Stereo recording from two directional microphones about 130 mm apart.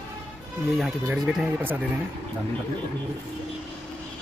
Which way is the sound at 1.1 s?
5° right (ahead or behind).